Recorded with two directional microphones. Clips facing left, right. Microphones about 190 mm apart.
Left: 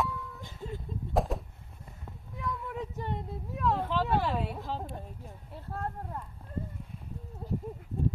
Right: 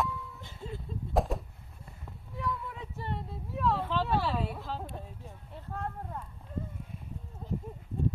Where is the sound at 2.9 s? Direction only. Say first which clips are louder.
Left 2 dB; 15° left (ahead or behind).